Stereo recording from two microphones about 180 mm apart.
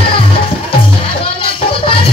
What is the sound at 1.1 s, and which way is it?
Music, 30° left (ahead or behind).